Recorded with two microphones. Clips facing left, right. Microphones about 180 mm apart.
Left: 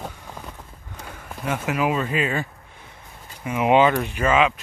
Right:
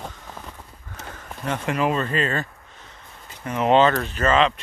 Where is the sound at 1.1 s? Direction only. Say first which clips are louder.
Left 1 dB; 10° left (ahead or behind).